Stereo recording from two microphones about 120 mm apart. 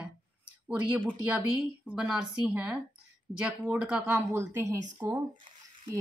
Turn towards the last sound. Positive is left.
turn(degrees=-35)  # may be behind; listen again after turning